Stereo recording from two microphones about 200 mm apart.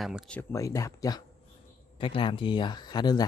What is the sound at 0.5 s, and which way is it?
Speech, 15° left (ahead or behind).